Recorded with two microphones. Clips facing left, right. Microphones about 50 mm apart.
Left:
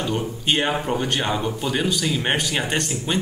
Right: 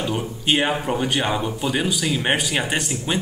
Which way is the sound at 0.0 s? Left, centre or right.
Centre.